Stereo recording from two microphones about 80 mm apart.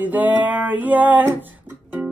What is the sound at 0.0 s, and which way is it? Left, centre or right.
Music, right.